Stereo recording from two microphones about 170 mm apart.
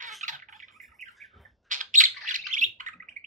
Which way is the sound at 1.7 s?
50° right (ahead or behind).